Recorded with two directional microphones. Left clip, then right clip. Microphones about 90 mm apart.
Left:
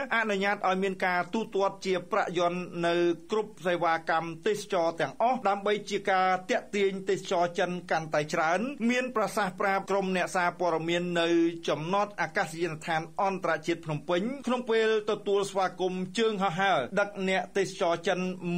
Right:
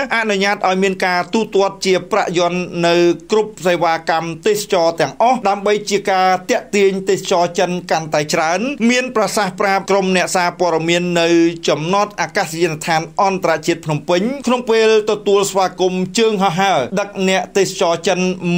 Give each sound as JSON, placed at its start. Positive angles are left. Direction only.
{"t": 0.0, "sound": "speech", "side_deg": -20}
{"t": 1.3, "sound": "a man's voice", "side_deg": -10}